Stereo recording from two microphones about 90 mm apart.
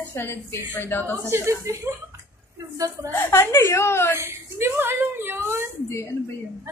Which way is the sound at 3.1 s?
30° left (ahead or behind).